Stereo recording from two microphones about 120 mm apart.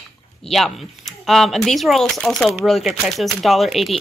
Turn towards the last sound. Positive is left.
turn(degrees=0)  # may be behind; listen again after turning